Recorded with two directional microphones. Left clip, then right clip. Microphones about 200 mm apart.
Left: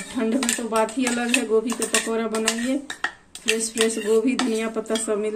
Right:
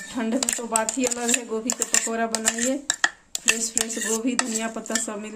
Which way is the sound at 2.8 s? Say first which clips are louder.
Right 5 dB; 60° right (ahead or behind).